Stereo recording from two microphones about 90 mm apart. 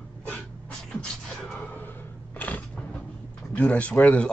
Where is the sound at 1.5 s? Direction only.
15° left (ahead or behind).